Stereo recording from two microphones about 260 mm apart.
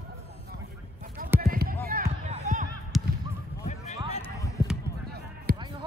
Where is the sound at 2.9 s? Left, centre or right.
Centre.